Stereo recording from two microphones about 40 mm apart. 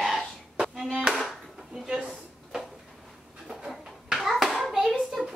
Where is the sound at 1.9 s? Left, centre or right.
Centre.